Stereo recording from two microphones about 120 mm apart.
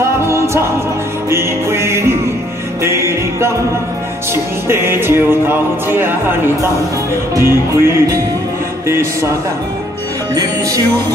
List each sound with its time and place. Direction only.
1.3 s music: 20° right (ahead or behind)
4.6 s music: 20° right (ahead or behind)